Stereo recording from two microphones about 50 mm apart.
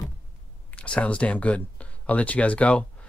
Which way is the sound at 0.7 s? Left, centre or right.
Left.